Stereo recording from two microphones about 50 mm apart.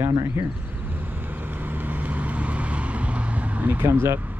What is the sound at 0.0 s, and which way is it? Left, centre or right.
Speech, right.